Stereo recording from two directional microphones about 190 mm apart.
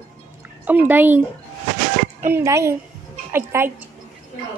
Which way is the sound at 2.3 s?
15° right (ahead or behind).